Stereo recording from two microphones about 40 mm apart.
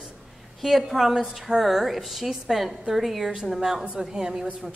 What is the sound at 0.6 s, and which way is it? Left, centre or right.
A woman's voice, centre.